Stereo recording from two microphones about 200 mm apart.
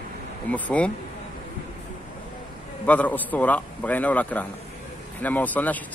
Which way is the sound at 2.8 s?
5° left (ahead or behind).